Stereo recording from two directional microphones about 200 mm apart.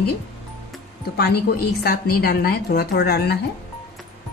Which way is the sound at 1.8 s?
50° left (ahead or behind).